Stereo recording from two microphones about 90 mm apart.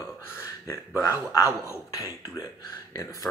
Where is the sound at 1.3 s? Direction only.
35° left (ahead or behind).